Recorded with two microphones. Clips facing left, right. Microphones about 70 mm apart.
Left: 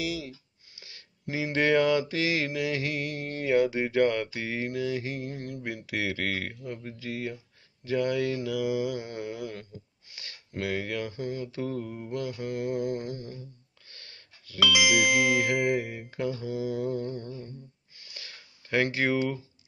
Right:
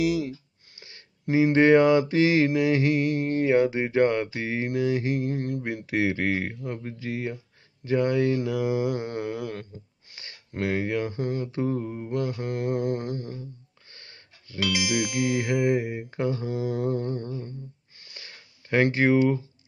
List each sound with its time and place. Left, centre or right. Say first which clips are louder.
0.7 s mantra: right 2 dB; right
4.6 s mantra: right 8 dB; right
10.1 s mantra: right 3 dB; right
13.9 s a sound: right 2 dB; right
15.4 s speech: right 2 dB; right
16.3 s mantra: right 2 dB; right
18.0 s a sound: right 1 dB; right
19.1 s speech: right 7 dB; right